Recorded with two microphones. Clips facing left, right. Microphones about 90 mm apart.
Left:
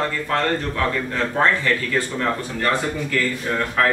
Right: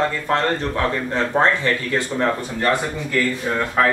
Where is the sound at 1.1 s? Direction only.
25° right (ahead or behind).